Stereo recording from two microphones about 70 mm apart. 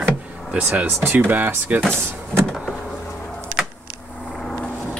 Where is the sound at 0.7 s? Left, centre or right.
Right.